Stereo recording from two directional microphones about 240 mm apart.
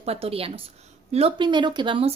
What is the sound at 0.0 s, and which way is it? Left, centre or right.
Speech, right.